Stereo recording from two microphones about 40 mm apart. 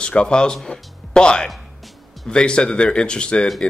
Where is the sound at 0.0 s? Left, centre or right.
Left.